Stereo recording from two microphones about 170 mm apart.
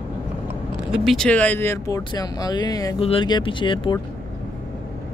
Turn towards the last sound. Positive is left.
turn(degrees=30)  # may be behind; listen again after turning